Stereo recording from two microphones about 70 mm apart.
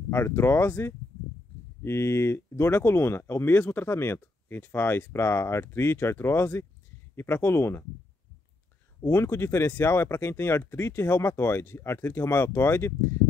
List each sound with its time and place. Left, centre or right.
0.1 s speech: left
1.8 s speech: left
3.5 s speech: left
9.0 s speech: left